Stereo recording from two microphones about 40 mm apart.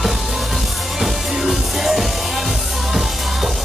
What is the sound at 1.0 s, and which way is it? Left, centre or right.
Music, centre.